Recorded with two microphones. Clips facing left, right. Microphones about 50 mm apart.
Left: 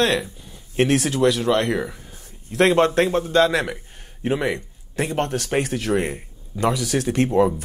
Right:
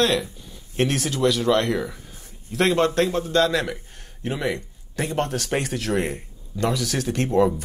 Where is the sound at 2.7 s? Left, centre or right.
Centre.